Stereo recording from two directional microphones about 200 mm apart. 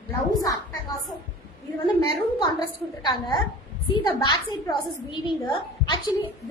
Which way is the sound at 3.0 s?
20° left (ahead or behind).